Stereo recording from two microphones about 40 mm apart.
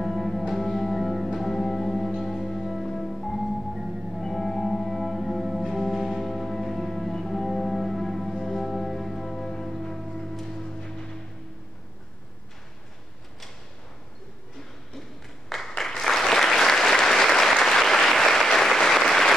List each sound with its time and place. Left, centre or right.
0.0 s music: centre
10.3 s music: centre
10.6 s music: centre
15.5 s applause: centre